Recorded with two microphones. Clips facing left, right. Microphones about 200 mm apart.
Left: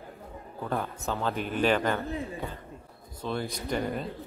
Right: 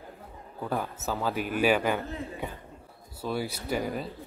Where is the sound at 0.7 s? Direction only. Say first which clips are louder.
Even; 5° right (ahead or behind).